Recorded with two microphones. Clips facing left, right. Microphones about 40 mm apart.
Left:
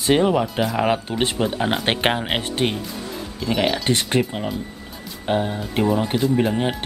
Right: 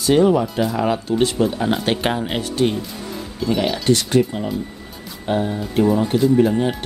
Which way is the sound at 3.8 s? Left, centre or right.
Left.